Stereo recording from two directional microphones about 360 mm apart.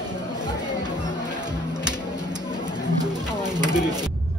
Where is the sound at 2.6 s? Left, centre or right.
Centre.